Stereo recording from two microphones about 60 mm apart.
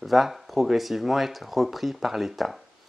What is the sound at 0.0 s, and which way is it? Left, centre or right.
Speech, centre.